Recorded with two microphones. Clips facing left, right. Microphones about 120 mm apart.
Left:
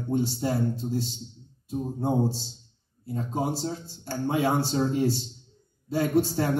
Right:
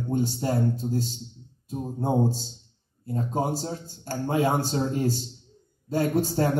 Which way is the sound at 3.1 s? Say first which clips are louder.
Right 2 dB; 45° right (ahead or behind).